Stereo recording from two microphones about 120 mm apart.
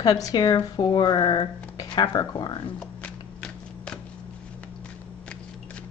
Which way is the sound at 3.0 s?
10° left (ahead or behind).